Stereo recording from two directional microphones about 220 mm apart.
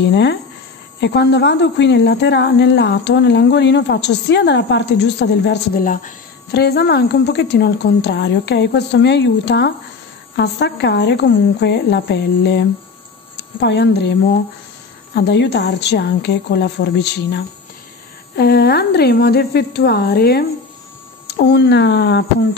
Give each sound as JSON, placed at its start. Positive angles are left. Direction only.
{"t": 0.1, "sound": "a woman's voice", "side_deg": 50}